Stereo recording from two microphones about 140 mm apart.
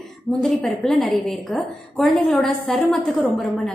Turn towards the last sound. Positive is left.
turn(degrees=0)  # may be behind; listen again after turning